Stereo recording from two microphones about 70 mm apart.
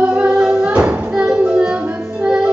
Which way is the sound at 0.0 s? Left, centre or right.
Centre.